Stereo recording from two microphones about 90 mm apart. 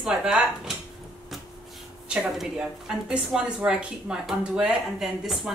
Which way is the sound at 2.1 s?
10° right (ahead or behind).